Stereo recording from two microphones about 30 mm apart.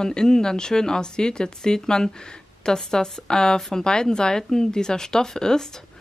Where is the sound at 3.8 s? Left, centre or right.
Left.